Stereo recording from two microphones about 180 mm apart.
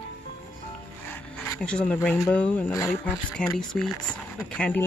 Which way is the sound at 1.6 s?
5° left (ahead or behind).